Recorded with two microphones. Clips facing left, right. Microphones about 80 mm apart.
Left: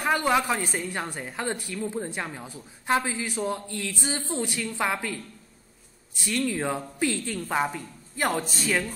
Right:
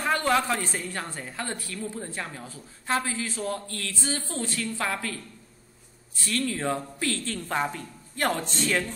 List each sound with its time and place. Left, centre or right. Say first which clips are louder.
0.0 s a woman's voice: left 1 dB; centre